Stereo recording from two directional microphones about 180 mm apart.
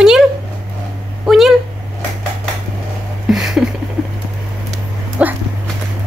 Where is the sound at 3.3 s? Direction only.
Centre (ahead or behind).